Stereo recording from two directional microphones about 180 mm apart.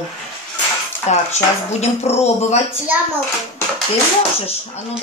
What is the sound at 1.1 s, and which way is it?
Speech, 40° left (ahead or behind).